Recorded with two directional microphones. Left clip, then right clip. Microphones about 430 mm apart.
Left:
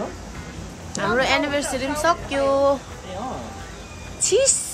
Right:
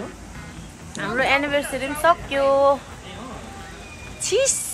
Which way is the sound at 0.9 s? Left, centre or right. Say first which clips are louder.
Left 1 dB; centre.